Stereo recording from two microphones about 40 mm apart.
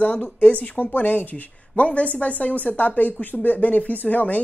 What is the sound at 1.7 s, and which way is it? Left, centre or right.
Speech, left.